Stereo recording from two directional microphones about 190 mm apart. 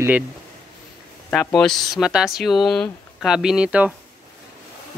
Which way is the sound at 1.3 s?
5° left (ahead or behind).